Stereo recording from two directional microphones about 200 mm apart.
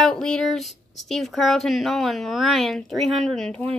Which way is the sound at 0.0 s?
5° left (ahead or behind).